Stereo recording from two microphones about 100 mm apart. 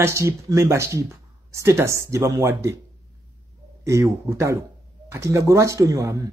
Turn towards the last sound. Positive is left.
turn(degrees=-35)  # may be behind; listen again after turning